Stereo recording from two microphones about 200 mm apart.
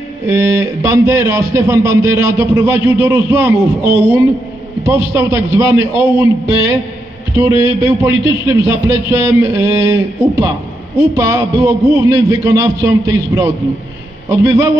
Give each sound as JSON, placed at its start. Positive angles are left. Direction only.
{"t": 0.3, "sound": "a man's voice", "side_deg": -15}
{"t": 7.3, "sound": "a man's voice", "side_deg": -15}